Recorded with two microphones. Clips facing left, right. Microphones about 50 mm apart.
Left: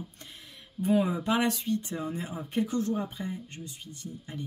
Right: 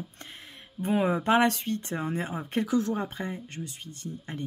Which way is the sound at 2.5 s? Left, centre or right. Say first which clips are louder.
Right 2 dB; right.